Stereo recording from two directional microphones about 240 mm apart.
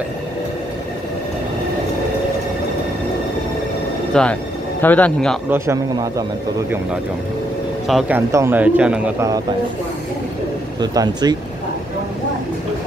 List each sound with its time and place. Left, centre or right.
4.1 s speech: centre
5.5 s speech: centre
7.9 s speech: centre
10.8 s speech: centre